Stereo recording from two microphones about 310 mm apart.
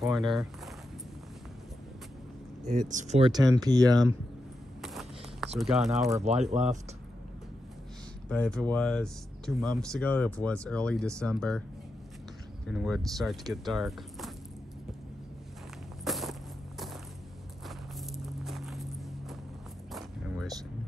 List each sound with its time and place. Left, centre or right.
2.7 s speech: right
4.8 s a sound: centre
5.6 s speech: centre
6.5 s speech: right
8.3 s speech: centre
12.6 s speech: centre
16.0 s walk: centre
19.9 s a sound: centre